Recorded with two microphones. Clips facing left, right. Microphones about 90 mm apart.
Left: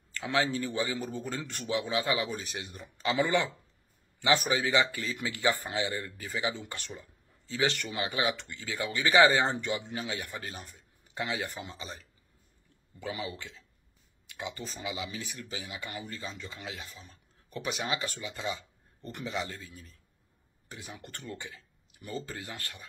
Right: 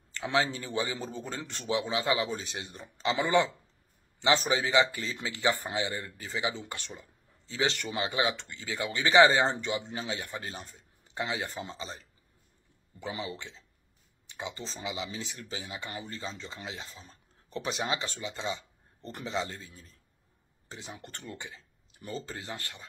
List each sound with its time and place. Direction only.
0.1 s a man's voice: 25° right (ahead or behind)
13.0 s a man's voice: 25° right (ahead or behind)